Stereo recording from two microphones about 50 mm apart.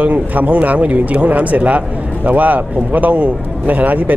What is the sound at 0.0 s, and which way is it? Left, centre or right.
Speech, right.